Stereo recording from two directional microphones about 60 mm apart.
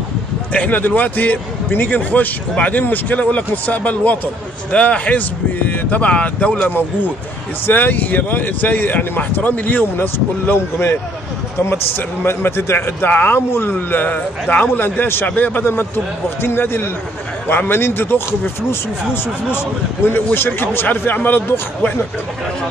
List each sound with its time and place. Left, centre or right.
0.5 s speech: left
12.2 s speech: left
15.6 s speech: left
20.0 s speech: left